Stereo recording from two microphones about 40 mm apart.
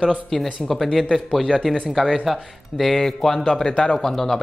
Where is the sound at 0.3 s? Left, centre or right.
Centre.